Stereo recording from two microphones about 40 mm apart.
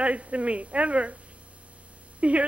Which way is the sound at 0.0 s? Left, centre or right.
Right.